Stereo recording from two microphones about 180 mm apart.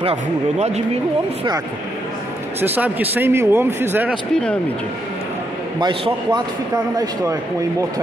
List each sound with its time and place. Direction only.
0.0 s speech: 35° right (ahead or behind)
2.6 s speech: 10° right (ahead or behind)
4.3 s speech: 5° left (ahead or behind)
5.8 s a man's voice: 25° right (ahead or behind)